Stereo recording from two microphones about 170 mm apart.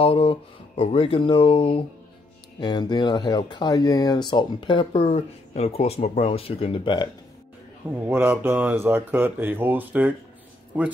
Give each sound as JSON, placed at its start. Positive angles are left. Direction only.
{"t": 0.0, "sound": "speech", "side_deg": 35}
{"t": 8.1, "sound": "speech", "side_deg": -10}